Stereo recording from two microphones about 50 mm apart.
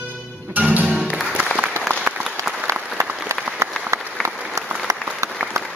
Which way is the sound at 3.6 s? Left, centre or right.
Right.